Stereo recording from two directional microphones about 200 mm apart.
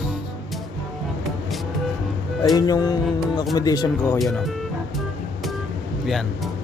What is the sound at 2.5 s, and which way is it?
Music, 20° left (ahead or behind).